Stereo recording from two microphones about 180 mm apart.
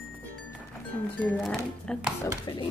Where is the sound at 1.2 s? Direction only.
10° left (ahead or behind).